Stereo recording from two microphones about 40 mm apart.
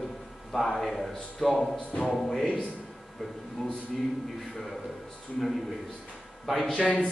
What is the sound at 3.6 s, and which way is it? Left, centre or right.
Speech, centre.